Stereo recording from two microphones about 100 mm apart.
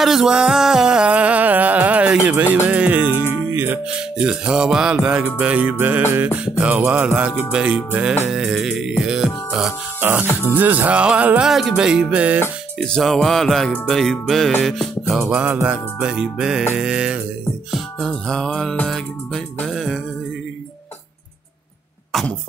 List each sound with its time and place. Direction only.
0.0 s music: 5° right (ahead or behind); by 4.3 s 20° right (ahead or behind)
4.3 s music: 10° right (ahead or behind)
9.9 s music: 20° right (ahead or behind)
12.7 s music: 5° left (ahead or behind)
15.7 s music: 10° right (ahead or behind)
17.6 s music: centre (ahead or behind)